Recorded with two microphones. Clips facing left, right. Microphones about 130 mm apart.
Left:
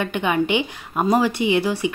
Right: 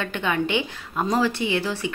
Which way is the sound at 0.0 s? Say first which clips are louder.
Left 4 dB; 15° left (ahead or behind).